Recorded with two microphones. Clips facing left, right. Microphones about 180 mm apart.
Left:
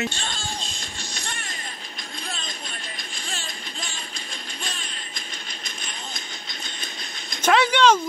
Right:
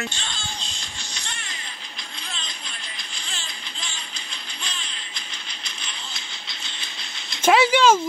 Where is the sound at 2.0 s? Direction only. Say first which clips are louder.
Left 3 dB; 45° left (ahead or behind).